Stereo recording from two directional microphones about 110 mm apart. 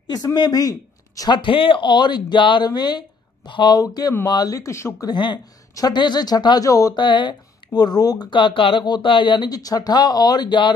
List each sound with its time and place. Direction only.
0.0 s speech: 40° left (ahead or behind)
1.4 s speech: 55° left (ahead or behind); by 4.9 s 25° left (ahead or behind)
5.0 s speech: 40° left (ahead or behind)